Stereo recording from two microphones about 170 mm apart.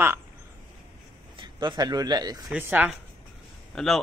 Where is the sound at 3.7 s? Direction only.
Centre (ahead or behind).